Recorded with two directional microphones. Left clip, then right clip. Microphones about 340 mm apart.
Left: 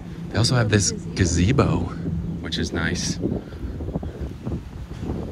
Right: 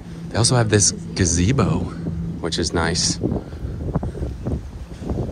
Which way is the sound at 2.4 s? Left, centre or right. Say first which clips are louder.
Right 5 dB; centre.